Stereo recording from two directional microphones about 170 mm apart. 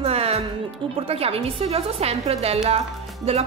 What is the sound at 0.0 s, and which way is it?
Music, 35° right (ahead or behind).